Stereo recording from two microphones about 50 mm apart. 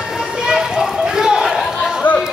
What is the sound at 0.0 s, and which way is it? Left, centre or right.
Run, centre.